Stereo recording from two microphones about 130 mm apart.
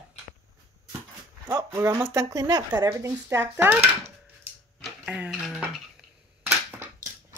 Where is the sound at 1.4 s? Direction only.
20° right (ahead or behind).